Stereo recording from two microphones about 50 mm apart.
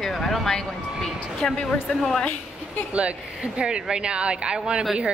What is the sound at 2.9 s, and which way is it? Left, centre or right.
Speech, right.